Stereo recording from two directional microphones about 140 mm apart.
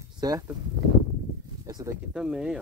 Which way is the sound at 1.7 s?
25° right (ahead or behind).